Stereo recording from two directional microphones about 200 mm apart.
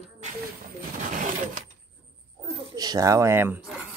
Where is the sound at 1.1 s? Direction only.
40° right (ahead or behind).